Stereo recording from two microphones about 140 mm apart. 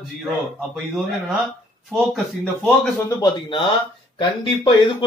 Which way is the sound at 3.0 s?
30° left (ahead or behind).